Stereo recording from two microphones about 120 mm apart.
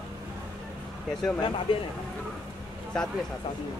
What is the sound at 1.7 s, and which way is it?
Speech, 45° left (ahead or behind).